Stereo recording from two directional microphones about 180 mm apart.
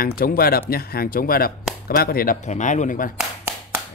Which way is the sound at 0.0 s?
55° left (ahead or behind).